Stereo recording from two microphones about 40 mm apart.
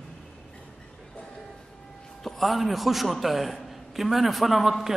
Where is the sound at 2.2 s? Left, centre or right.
Centre.